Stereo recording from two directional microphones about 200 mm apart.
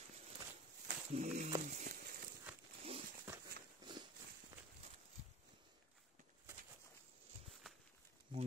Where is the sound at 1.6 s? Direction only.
40° right (ahead or behind).